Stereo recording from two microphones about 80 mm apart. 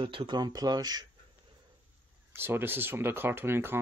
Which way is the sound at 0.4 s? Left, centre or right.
Right.